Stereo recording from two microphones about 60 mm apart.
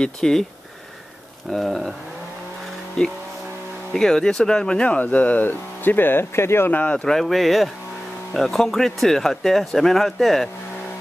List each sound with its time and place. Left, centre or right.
0.0 s speech: centre
1.5 s speech: centre
3.0 s speech: centre
5.5 s speech: left
6.8 s speech: left
7.1 s speech: centre